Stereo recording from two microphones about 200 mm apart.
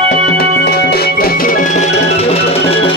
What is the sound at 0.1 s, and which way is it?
Music, 50° left (ahead or behind).